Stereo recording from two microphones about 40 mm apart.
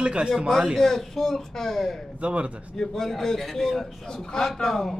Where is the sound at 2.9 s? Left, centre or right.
Centre.